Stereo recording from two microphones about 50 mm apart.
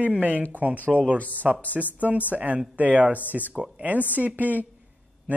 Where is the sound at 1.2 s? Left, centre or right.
Left.